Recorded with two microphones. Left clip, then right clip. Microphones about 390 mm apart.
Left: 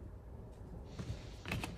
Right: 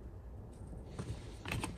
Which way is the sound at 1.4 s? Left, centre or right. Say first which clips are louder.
Right 1 dB; centre.